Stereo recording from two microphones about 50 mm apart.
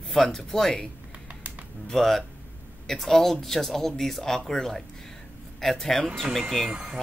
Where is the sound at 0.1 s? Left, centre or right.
Centre.